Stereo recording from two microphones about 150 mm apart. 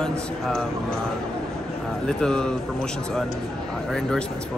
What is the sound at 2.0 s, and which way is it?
A man's voice, 5° left (ahead or behind).